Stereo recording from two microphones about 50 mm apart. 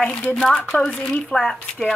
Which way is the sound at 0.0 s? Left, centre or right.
Left.